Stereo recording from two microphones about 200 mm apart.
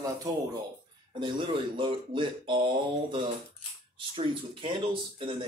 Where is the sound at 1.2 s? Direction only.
25° right (ahead or behind).